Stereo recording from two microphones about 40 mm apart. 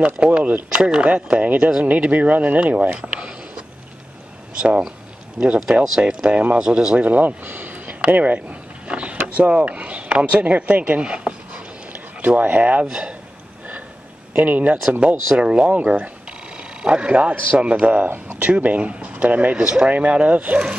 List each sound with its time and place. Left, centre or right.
0.0 s speech: right
3.1 s a sound: right
4.6 s speech: right
5.9 s speech: right
7.0 s speech: right
8.8 s a sound: right
9.3 s speech: right
11.0 s speech: right
12.2 s speech: right
12.8 s speech: right
14.3 s speech: right